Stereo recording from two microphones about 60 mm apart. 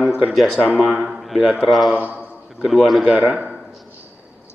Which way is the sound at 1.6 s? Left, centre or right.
Centre.